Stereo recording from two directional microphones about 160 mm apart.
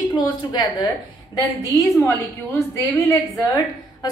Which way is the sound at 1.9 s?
20° left (ahead or behind).